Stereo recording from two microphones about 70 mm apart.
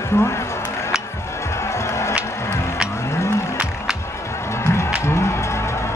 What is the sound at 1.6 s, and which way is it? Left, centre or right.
Music, left.